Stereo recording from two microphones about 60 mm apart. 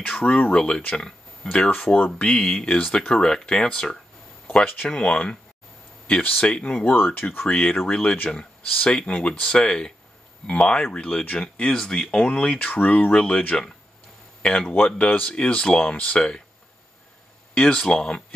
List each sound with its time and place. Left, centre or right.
0.0 s speech: left
0.6 s speech: centre
1.7 s speech: left
2.2 s speech: centre
12.5 s speech: left
13.5 s speech: centre
17.6 s speech: centre